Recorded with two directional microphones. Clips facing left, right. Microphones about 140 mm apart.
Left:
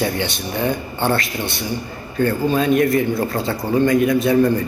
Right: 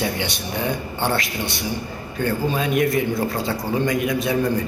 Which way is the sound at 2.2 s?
15° right (ahead or behind).